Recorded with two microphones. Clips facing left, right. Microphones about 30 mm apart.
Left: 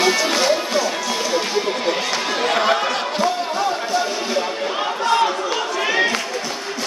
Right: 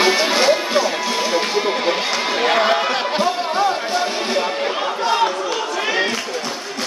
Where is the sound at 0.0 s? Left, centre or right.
Right.